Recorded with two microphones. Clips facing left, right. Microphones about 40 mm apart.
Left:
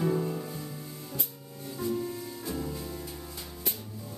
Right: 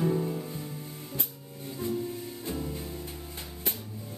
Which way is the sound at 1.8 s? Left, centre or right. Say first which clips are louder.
Left 1 dB; right.